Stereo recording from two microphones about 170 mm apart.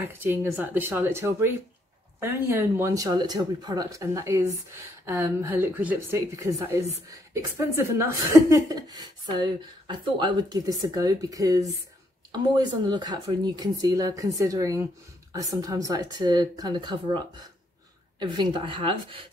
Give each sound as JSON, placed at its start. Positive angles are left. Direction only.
{"t": 0.0, "sound": "speech", "side_deg": -10}
{"t": 18.2, "sound": "speech", "side_deg": -25}